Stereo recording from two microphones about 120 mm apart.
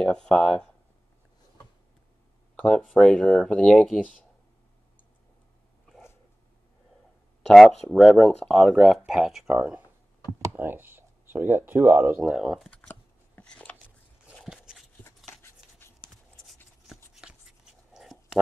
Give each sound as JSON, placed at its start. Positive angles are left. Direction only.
{"t": 0.0, "sound": "speech", "side_deg": 5}
{"t": 2.5, "sound": "speech", "side_deg": 5}
{"t": 7.4, "sound": "speech", "side_deg": 0}
{"t": 10.4, "sound": "speech", "side_deg": -20}
{"t": 12.4, "sound": "speech", "side_deg": 0}
{"t": 13.4, "sound": "a sound", "side_deg": 10}
{"t": 14.7, "sound": "a sound", "side_deg": -5}
{"t": 16.8, "sound": "writing", "side_deg": -5}